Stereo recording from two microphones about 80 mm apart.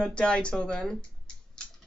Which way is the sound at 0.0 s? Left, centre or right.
Centre.